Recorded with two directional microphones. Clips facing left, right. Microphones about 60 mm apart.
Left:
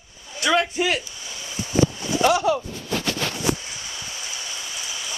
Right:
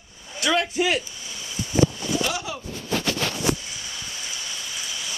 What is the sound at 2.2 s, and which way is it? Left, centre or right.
Speech, left.